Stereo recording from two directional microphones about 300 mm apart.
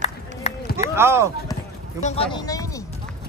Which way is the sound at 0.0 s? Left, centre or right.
Left.